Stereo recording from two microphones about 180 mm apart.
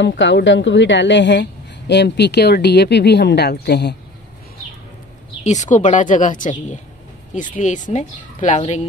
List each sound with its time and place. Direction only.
0.2 s a woman's voice: 90° left; by 3.9 s 70° left (ahead or behind)
5.4 s a woman's voice: 40° left (ahead or behind)